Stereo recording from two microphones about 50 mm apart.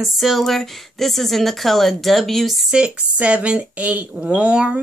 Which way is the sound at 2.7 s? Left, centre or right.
Centre.